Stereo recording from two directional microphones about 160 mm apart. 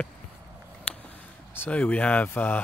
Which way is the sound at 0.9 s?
10° left (ahead or behind).